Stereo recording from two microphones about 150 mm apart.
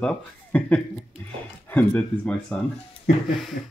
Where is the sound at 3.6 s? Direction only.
70° left (ahead or behind).